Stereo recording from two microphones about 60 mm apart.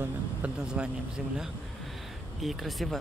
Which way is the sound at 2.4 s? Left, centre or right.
Centre.